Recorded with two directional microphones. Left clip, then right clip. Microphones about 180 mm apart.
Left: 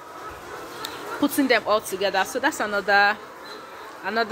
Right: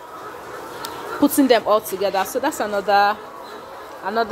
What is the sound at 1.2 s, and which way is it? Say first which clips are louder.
Speech: right 5 dB; 30° right (ahead or behind).